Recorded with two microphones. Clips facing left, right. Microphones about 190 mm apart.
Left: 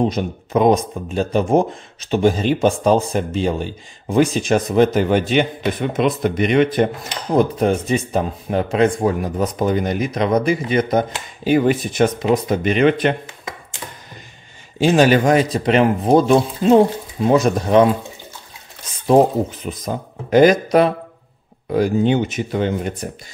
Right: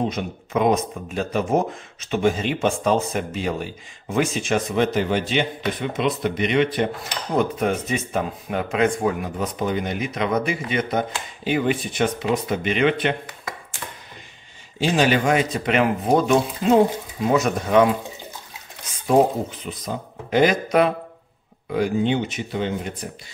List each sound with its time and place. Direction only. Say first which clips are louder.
0.1 s speech: left 5 dB; 35° left (ahead or behind)
7.3 s speech: left 5 dB; 35° left (ahead or behind)
13.8 s typewriter: left 2 dB; 10° left (ahead or behind)
14.8 s speech: left 6 dB; 45° left (ahead or behind)
19.6 s speech: left 4 dB; 45° left (ahead or behind)